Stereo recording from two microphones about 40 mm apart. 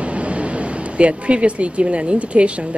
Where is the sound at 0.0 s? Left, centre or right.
Right.